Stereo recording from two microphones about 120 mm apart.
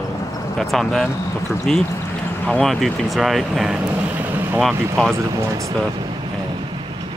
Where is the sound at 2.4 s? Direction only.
5° left (ahead or behind).